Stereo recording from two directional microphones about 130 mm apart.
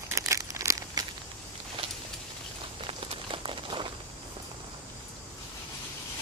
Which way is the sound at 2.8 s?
45° right (ahead or behind).